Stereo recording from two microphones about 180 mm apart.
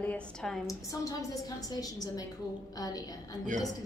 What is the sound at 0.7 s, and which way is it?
A woman's voice, 20° left (ahead or behind).